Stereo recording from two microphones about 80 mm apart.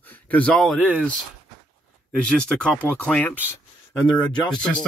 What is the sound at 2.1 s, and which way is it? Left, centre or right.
Speech, centre.